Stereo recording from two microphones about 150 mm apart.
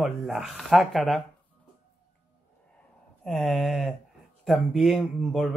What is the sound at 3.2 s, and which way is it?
Speech, centre (ahead or behind).